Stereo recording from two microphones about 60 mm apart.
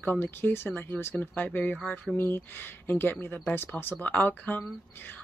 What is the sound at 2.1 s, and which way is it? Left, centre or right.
Speech, left.